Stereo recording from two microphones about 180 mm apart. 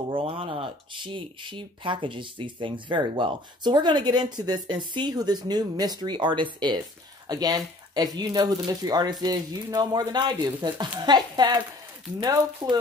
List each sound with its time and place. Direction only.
0.1 s speech: 30° right (ahead or behind)